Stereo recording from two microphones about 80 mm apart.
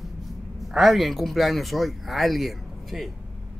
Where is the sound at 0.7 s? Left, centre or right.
Centre.